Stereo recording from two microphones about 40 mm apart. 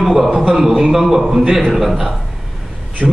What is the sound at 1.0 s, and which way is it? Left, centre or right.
A man's voice, centre.